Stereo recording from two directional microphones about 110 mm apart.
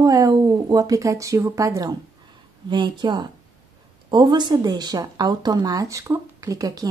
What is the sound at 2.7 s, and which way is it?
Speech, 45° right (ahead or behind).